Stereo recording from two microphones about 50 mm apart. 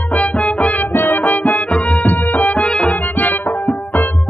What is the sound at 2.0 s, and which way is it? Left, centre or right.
Music, left.